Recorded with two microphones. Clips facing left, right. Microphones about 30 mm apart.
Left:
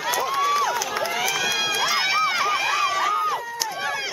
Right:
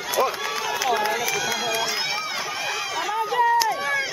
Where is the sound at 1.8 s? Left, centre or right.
Left.